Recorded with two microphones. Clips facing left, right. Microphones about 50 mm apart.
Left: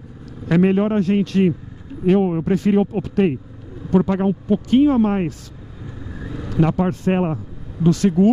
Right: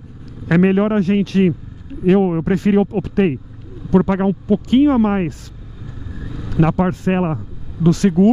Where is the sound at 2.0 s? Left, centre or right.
Right.